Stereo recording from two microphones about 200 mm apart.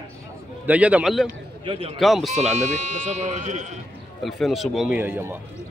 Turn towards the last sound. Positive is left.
turn(degrees=-10)  # may be behind; listen again after turning